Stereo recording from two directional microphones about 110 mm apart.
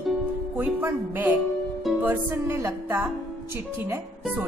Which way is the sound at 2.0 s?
25° right (ahead or behind).